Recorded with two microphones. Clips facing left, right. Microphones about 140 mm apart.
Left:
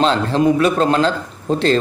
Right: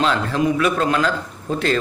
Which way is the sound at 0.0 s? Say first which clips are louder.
Left 4 dB; 30° left (ahead or behind).